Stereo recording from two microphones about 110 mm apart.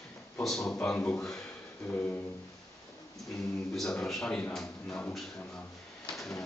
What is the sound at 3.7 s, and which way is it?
A man's voice, 5° left (ahead or behind).